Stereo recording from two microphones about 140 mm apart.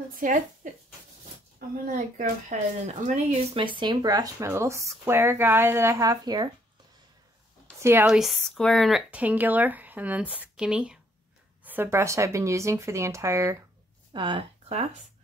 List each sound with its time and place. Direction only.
0.1 s speech: 70° right (ahead or behind)
1.9 s speech: 65° right (ahead or behind)
3.5 s speech: 35° right (ahead or behind)
7.8 s speech: 15° right (ahead or behind)
8.1 s speech: centre (ahead or behind)
9.1 s speech: 10° right (ahead or behind)
14.1 s speech: 35° right (ahead or behind)